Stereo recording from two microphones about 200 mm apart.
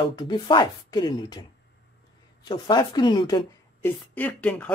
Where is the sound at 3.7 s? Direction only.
10° left (ahead or behind).